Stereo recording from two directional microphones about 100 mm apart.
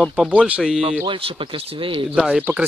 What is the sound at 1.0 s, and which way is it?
Speech, 55° right (ahead or behind).